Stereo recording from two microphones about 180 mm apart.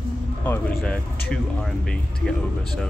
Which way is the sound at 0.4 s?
10° left (ahead or behind).